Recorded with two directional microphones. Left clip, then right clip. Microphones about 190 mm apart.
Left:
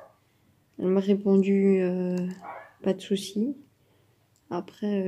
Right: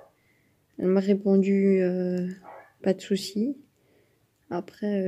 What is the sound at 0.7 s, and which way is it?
Speech, 25° right (ahead or behind).